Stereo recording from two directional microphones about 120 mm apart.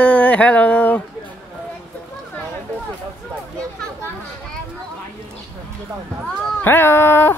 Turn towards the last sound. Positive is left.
turn(degrees=20)  # may be behind; listen again after turning